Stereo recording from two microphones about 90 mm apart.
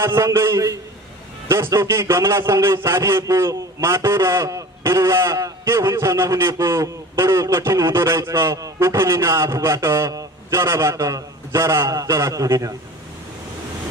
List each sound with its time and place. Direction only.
0.0 s a man's voice: 30° right (ahead or behind)